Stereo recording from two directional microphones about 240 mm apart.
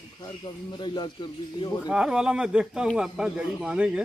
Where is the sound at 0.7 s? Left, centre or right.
Centre.